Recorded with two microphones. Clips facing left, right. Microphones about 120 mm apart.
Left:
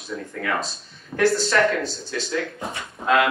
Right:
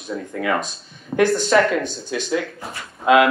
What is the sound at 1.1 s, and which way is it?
Speech, 25° right (ahead or behind).